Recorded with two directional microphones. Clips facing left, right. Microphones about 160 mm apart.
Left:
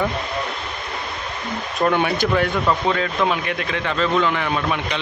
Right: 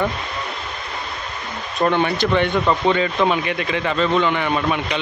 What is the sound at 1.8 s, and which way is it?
Speech, 5° left (ahead or behind).